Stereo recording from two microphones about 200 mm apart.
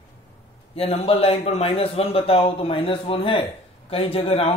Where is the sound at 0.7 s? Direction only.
30° left (ahead or behind).